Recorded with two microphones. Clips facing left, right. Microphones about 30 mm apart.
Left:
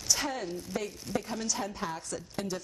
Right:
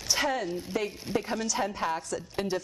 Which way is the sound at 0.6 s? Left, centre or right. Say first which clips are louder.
Right 4 dB; right.